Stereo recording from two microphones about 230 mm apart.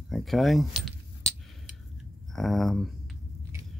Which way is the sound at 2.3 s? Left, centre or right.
Centre.